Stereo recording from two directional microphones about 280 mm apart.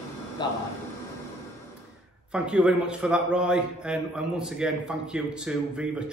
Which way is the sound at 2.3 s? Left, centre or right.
Centre.